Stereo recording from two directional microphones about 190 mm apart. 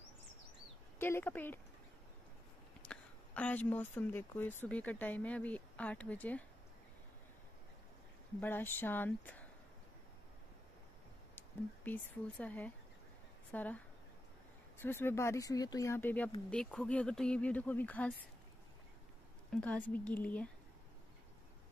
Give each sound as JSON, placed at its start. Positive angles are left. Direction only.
{"t": 0.9, "sound": "speech", "side_deg": 10}
{"t": 2.8, "sound": "speech", "side_deg": 5}
{"t": 8.4, "sound": "speech", "side_deg": 10}
{"t": 11.3, "sound": "speech", "side_deg": 10}
{"t": 19.5, "sound": "speech", "side_deg": 5}